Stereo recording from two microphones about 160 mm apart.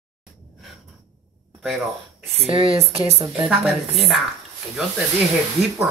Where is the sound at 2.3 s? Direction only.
35° right (ahead or behind).